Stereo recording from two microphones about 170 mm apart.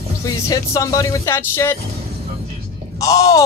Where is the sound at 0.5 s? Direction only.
20° left (ahead or behind).